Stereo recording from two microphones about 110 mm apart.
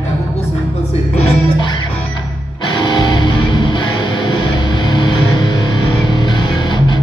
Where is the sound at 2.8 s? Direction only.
45° left (ahead or behind).